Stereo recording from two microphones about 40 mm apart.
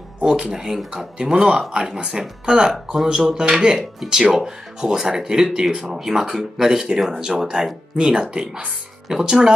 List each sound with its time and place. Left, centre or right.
0.2 s speech: right